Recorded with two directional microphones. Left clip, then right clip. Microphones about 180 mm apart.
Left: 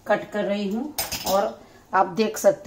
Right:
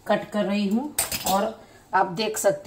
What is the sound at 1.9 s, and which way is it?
Speech, 30° left (ahead or behind).